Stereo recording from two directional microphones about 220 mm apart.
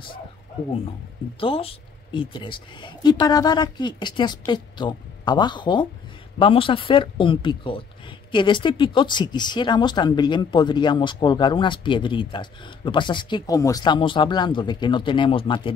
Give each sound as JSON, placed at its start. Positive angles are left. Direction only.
{"t": 1.4, "sound": "speech", "side_deg": 25}